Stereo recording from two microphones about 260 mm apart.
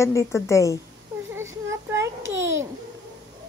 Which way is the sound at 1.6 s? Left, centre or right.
Centre.